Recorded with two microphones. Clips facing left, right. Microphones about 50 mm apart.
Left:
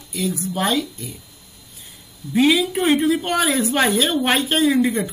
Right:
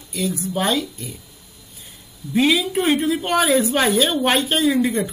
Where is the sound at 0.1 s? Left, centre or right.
Centre.